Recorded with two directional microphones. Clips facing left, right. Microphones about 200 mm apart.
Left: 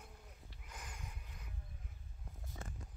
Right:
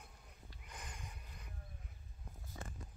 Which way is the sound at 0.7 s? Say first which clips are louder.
Even; 5° left (ahead or behind).